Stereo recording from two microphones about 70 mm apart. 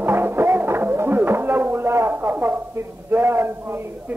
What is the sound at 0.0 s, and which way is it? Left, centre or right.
Music, right.